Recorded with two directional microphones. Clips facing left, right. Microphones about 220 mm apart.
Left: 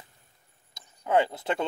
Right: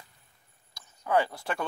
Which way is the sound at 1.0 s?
25° left (ahead or behind).